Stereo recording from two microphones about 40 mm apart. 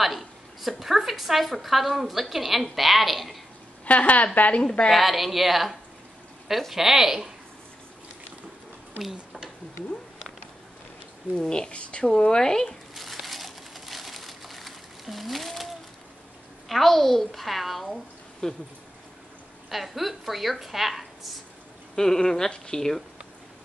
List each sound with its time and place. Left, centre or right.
0.0 s a woman's voice: centre
3.8 s a woman's voice: left
4.9 s a woman's voice: centre
11.3 s speech: centre
12.2 s speech: centre
12.9 s crumpling: centre
16.6 s a woman's voice: centre
18.4 s speech: centre
19.7 s a woman's voice: centre
21.9 s speech: centre